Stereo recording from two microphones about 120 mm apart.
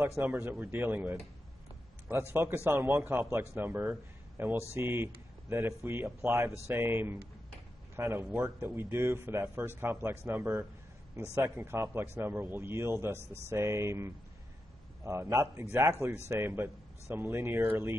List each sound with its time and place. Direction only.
0.2 s speech: 15° right (ahead or behind)